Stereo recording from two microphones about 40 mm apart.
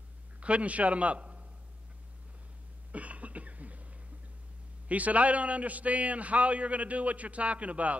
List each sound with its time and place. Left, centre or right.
0.4 s a man's voice: right
2.9 s cough: right
4.8 s a man's voice: right